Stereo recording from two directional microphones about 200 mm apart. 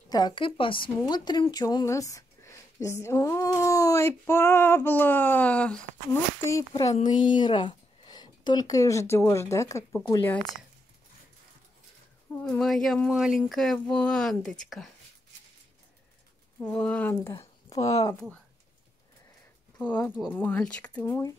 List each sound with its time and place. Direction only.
0.1 s a woman's voice: 20° left (ahead or behind); by 5.8 s 5° left (ahead or behind)
7.1 s speech: 20° left (ahead or behind)
12.4 s speech: 5° left (ahead or behind)
16.6 s speech: 5° left (ahead or behind)
19.8 s speech: 5° left (ahead or behind)